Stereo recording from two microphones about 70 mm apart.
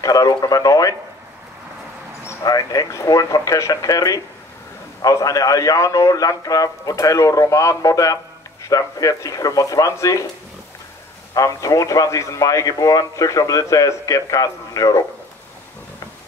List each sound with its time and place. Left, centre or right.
0.0 s speech: left
2.4 s speech: left
11.3 s speech: left